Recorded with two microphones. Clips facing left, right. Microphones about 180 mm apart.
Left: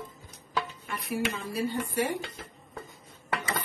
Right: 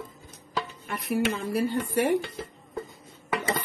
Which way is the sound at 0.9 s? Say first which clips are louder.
Right 5 dB; 65° right (ahead or behind).